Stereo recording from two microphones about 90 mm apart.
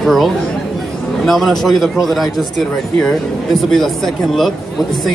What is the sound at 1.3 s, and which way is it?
A man's voice, centre (ahead or behind).